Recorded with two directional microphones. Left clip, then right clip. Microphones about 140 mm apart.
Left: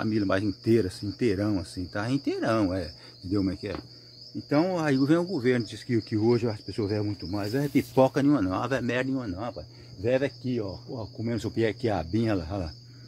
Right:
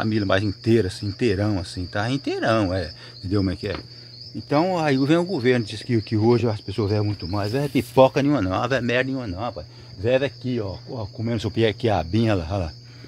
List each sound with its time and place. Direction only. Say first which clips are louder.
0.0 s speech: right 5 dB; 10° right (ahead or behind)
3.3 s speech: right 4 dB; 25° right (ahead or behind)
7.5 s speech: right 6 dB; 5° right (ahead or behind)